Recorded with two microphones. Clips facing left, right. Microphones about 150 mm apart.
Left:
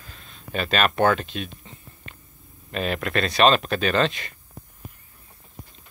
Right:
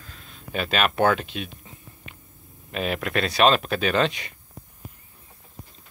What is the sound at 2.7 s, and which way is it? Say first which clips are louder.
Speech: left 1 dB; 5° right (ahead or behind).